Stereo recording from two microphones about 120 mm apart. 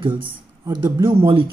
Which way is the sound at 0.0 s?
40° right (ahead or behind).